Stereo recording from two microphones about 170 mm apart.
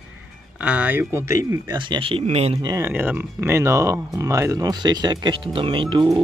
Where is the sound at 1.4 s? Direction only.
25° right (ahead or behind).